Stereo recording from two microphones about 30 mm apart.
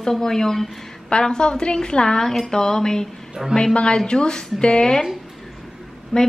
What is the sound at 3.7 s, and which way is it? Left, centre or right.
Speech, left.